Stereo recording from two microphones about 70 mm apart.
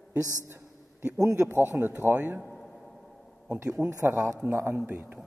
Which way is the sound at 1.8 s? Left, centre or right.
Right.